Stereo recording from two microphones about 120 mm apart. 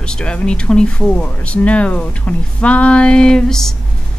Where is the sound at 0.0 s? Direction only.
10° left (ahead or behind).